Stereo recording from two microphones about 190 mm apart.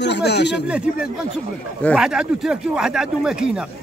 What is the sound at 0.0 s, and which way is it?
Speech, 65° left (ahead or behind).